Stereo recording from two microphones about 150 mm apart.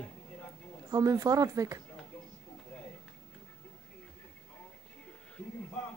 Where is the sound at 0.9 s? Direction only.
25° right (ahead or behind).